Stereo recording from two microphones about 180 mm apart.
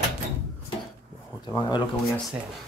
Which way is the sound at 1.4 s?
25° left (ahead or behind).